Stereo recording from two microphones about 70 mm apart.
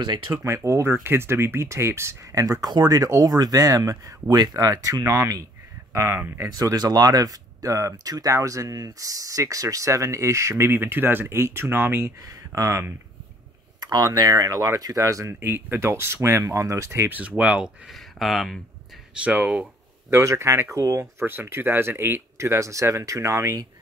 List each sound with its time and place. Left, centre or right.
0.3 s speech: right
2.4 s speech: right
2.7 s speech: right
3.1 s speech: right
5.9 s speech: right
6.5 s speech: right
10.7 s speech: right
12.3 s speech: right
13.8 s speech: right
15.4 s speech: right
17.4 s speech: centre
17.9 s speech: centre
19.1 s speech: right
20.1 s speech: right